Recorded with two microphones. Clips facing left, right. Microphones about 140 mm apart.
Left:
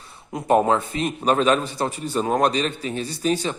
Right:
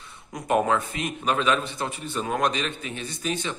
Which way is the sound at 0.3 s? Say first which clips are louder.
Left 4 dB; 30° left (ahead or behind).